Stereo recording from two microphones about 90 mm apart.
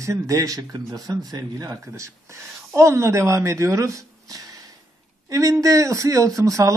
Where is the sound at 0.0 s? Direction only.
35° right (ahead or behind).